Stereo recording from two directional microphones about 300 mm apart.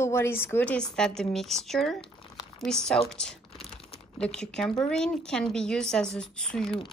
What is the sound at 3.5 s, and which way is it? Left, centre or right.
Typing, centre.